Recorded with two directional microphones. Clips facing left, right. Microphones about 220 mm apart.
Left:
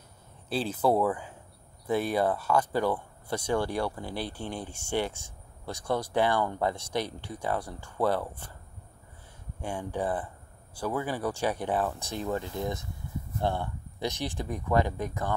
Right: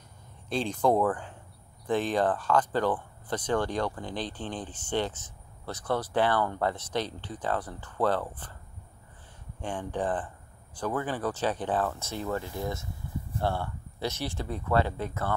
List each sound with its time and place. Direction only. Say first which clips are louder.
0.5 s speech: even; 5° left (ahead or behind)
9.6 s speech: even; 10° left (ahead or behind)